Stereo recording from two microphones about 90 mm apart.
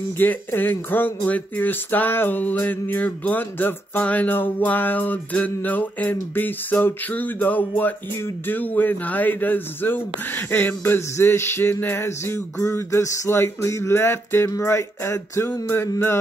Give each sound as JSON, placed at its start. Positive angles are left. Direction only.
{"t": 0.2, "sound": "speech", "side_deg": 20}